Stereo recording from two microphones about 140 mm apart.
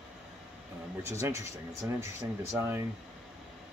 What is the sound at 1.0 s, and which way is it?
Speech, 20° right (ahead or behind).